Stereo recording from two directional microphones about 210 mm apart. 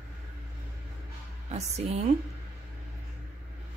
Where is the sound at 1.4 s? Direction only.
30° right (ahead or behind).